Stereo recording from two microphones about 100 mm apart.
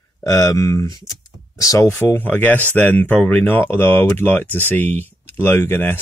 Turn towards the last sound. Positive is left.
turn(degrees=20)  # may be behind; listen again after turning